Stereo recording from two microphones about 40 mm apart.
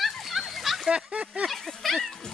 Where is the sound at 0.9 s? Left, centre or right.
Right.